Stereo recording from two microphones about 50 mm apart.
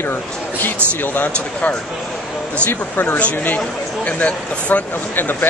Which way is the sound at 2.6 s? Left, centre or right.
Left.